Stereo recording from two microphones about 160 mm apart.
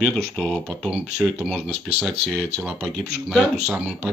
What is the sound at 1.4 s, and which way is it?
Speech, 5° right (ahead or behind).